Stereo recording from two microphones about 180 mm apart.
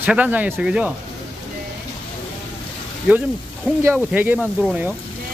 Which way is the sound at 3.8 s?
10° right (ahead or behind).